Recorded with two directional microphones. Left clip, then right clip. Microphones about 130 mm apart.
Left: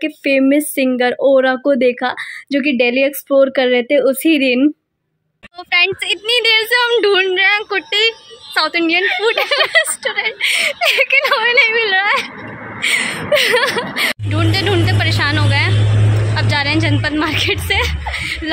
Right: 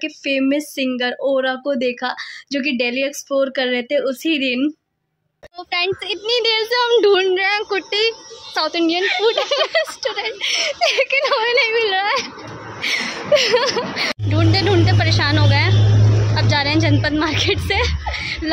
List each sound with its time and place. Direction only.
0.0 s speech: 35° left (ahead or behind)
5.7 s a woman's voice: 10° right (ahead or behind)